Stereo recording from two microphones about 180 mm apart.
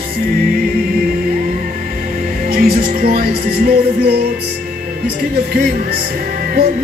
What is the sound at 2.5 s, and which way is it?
Music, 55° right (ahead or behind).